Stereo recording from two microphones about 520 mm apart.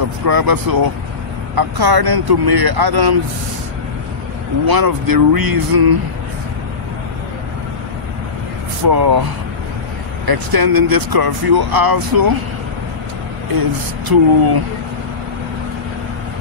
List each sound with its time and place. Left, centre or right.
0.2 s speech: right
4.6 s speech: right
8.8 s speech: right
10.2 s speech: right
13.6 s speech: right